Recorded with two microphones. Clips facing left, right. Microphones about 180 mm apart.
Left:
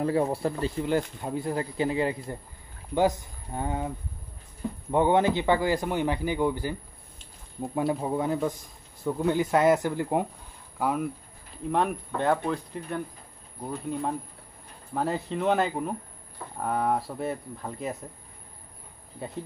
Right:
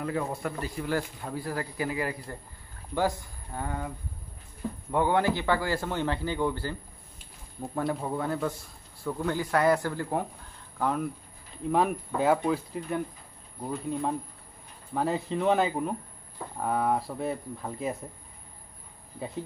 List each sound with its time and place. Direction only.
0.0 s speech: 30° left (ahead or behind)
4.9 s a man's voice: 20° left (ahead or behind)
7.9 s a man's voice: 15° left (ahead or behind)
10.8 s a man's voice: 5° left (ahead or behind)
11.7 s speech: 5° right (ahead or behind)